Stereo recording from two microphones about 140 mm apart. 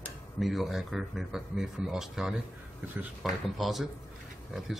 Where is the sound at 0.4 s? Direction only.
Centre (ahead or behind).